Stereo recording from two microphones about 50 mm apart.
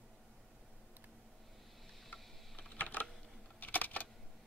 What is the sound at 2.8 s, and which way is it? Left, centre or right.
Typing, left.